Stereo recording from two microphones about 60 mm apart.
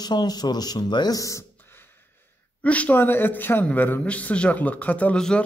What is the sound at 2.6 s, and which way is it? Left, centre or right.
A man's voice, left.